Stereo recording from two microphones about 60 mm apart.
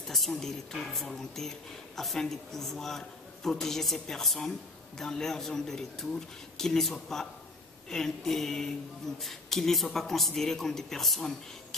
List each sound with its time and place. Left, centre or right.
0.1 s a man's voice: centre